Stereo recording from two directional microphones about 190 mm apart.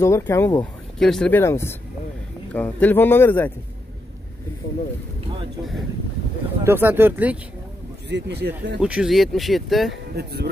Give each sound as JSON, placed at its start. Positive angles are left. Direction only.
{"t": 0.0, "sound": "speech", "side_deg": 15}
{"t": 0.9, "sound": "speech", "side_deg": 0}
{"t": 6.6, "sound": "speech", "side_deg": -10}
{"t": 8.1, "sound": "speech", "side_deg": -60}
{"t": 8.7, "sound": "speech", "side_deg": -5}
{"t": 10.1, "sound": "speech", "side_deg": -55}